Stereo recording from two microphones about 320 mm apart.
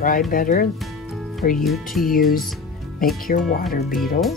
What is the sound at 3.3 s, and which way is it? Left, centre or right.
Speech, left.